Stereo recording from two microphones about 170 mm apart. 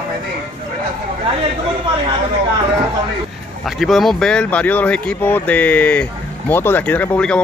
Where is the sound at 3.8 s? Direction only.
Centre (ahead or behind).